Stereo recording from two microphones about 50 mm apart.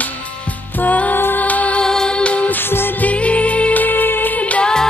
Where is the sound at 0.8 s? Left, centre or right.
Left.